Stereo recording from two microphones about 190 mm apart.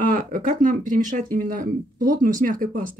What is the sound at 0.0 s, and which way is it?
Speech, 45° right (ahead or behind).